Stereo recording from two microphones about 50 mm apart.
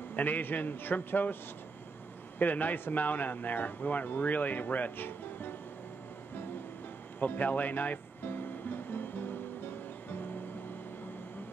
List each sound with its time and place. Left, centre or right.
0.1 s speech: left
7.2 s music: left